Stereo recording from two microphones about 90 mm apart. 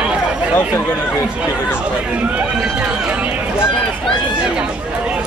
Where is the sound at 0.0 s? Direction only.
10° right (ahead or behind).